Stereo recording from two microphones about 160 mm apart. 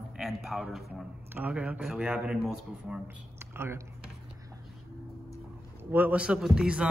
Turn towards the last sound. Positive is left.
turn(degrees=-5)  # may be behind; listen again after turning